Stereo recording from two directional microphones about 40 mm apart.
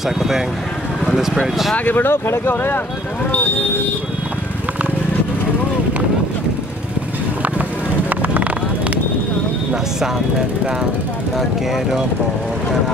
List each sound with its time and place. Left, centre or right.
1.1 s speech: centre
1.9 s speech: left
11.3 s speech: centre